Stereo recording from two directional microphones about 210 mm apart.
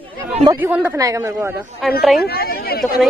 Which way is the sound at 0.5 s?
10° right (ahead or behind).